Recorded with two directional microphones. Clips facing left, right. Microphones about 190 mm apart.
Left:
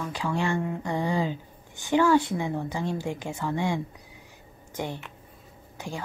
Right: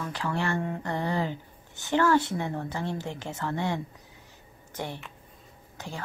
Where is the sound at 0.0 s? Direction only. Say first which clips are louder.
Left 2 dB; 15° left (ahead or behind).